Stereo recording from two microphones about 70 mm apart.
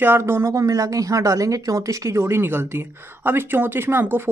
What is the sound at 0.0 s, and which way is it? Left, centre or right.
Speech, right.